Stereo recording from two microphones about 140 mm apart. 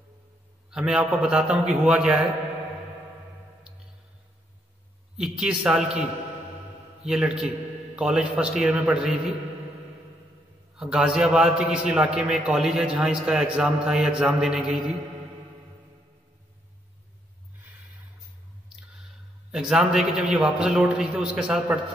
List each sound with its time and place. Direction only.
0.7 s a man's voice: 5° right (ahead or behind)
5.1 s a man's voice: 5° right (ahead or behind)
10.8 s a man's voice: 5° right (ahead or behind)
19.5 s a man's voice: 5° right (ahead or behind)